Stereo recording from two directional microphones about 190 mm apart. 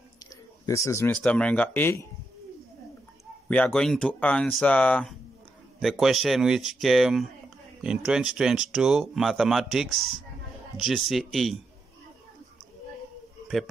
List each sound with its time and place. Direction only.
0.2 s a sound: 15° left (ahead or behind)
1.2 s speech: 5° left (ahead or behind)
3.4 s speech: 5° left (ahead or behind)